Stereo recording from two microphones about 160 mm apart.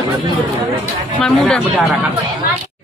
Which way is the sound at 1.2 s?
5° left (ahead or behind).